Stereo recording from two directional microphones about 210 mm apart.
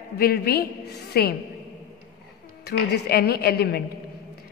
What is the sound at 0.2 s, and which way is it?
A woman's voice, 50° left (ahead or behind).